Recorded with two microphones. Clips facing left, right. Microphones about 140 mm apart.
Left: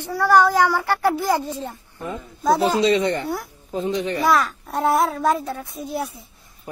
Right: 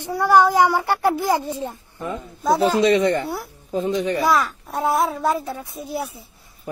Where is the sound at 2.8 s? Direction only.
50° right (ahead or behind).